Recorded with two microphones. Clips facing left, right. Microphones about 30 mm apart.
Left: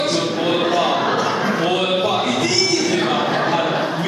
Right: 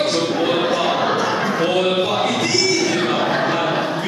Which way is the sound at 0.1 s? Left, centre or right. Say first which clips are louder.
Right 1 dB; centre.